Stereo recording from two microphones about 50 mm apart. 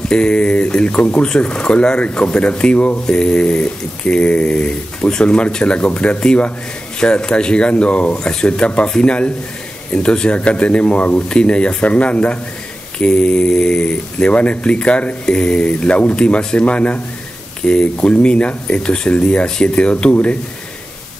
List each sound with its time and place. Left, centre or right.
0.1 s speech: centre